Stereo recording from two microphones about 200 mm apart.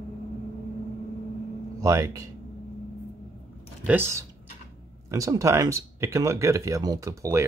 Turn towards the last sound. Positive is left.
turn(degrees=-15)  # may be behind; listen again after turning